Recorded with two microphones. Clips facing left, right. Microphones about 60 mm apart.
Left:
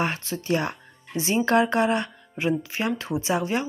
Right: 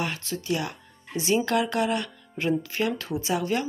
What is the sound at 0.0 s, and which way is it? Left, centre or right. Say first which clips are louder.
Speech: left 3 dB; left.